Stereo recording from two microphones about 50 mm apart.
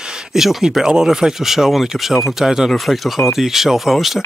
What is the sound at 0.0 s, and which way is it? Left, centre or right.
Speech, centre.